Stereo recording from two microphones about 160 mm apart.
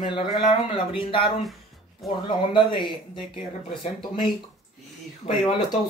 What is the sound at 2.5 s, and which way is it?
Speech, 30° left (ahead or behind).